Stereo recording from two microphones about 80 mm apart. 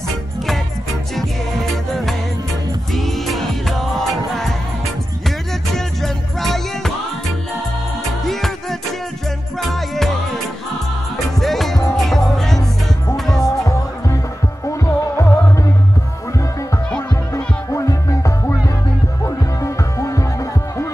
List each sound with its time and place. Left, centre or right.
2.9 s music: centre
5.8 s music: centre
8.3 s music: centre
11.3 s music: centre
13.4 s music: left
17.3 s music: left